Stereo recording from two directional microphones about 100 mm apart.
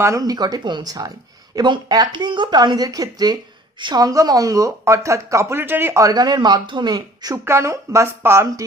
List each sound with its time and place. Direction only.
0.0 s speech: 35° right (ahead or behind)
7.4 s speech: 30° right (ahead or behind)